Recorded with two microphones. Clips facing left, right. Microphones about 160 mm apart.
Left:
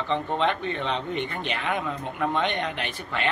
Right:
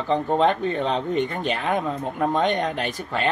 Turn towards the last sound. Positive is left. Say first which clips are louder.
# right 4 dB
turn(degrees=-40)  # may be behind; listen again after turning